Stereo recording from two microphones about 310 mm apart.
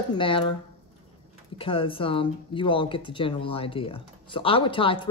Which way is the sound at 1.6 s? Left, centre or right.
Centre.